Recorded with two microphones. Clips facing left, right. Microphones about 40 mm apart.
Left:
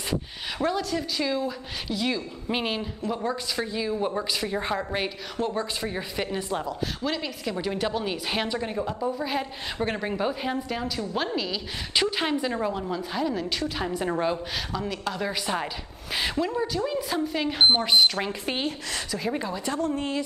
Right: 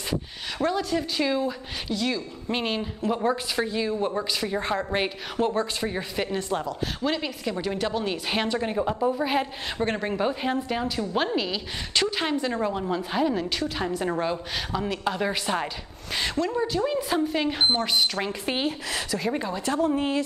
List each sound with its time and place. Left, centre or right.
0.6 s a woman's voice: centre
0.8 s a woman's voice: centre
1.9 s a woman's voice: centre
3.1 s a woman's voice: centre
4.9 s a woman's voice: centre
7.0 s a woman's voice: centre
8.6 s a woman's voice: centre
9.8 s a woman's voice: centre
11.9 s a woman's voice: centre
14.7 s a woman's voice: centre
16.1 s a woman's voice: centre
16.5 s a woman's voice: centre
17.8 s a woman's voice: centre